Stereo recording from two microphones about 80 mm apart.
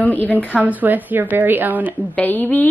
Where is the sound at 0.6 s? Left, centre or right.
Right.